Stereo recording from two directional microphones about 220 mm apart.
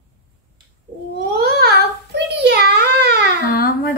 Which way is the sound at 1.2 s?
45° right (ahead or behind).